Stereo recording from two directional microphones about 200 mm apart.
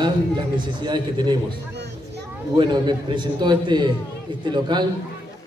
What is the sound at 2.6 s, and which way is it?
Speech, 25° right (ahead or behind).